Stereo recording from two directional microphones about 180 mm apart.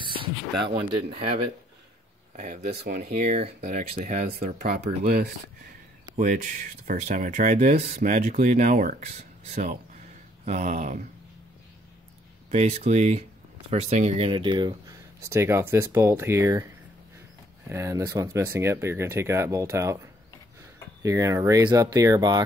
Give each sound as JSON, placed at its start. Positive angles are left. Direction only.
{"t": 0.0, "sound": "speech", "side_deg": -25}
{"t": 2.3, "sound": "speech", "side_deg": -50}
{"t": 4.6, "sound": "speech", "side_deg": -60}
{"t": 6.1, "sound": "speech", "side_deg": -45}
{"t": 12.4, "sound": "speech", "side_deg": -35}
{"t": 17.6, "sound": "speech", "side_deg": -15}
{"t": 21.0, "sound": "speech", "side_deg": -15}